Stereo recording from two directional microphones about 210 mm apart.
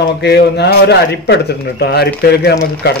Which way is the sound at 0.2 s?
50° left (ahead or behind).